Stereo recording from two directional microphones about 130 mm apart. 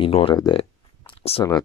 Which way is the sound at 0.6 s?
50° left (ahead or behind).